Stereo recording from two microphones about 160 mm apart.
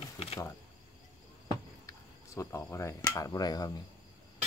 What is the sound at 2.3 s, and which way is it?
Speech, 15° left (ahead or behind).